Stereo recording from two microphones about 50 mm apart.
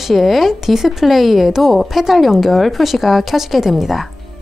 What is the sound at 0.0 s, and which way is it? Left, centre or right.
Speech, centre.